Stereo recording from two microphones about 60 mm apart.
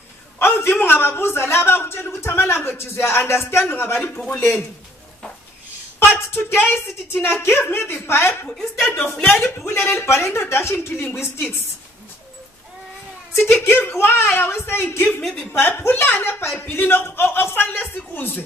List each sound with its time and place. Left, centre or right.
0.4 s a sound: left
0.7 s a woman's voice: left
2.2 s a woman's voice: left
5.9 s a sound: left
6.6 s a woman's voice: left
13.5 s a woman's voice: left